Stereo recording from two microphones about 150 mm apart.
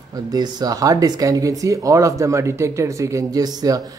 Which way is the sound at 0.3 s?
25° right (ahead or behind).